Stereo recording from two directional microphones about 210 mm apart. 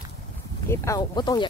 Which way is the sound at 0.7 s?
15° left (ahead or behind).